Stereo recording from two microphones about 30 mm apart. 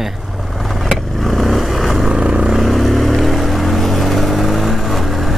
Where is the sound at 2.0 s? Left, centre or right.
Right.